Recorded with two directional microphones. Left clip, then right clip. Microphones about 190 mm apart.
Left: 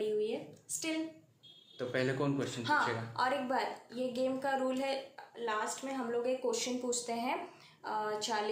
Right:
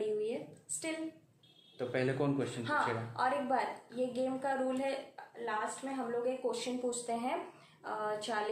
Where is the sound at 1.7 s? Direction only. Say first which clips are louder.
Even; 5° right (ahead or behind).